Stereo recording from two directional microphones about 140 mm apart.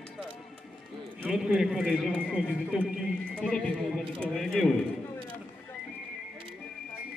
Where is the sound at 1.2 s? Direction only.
5° right (ahead or behind).